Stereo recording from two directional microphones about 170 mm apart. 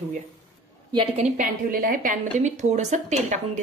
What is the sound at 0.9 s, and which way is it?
A woman's voice, 40° right (ahead or behind).